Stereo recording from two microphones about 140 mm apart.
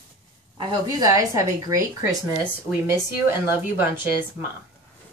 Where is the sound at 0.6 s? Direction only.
25° right (ahead or behind).